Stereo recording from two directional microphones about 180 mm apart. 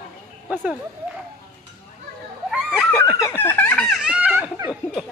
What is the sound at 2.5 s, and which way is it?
Snicker, 5° right (ahead or behind).